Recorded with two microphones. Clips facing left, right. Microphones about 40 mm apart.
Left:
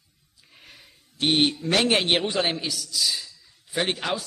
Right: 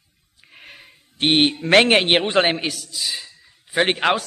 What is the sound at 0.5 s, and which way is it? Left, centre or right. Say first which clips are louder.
Speech: right 7 dB; right.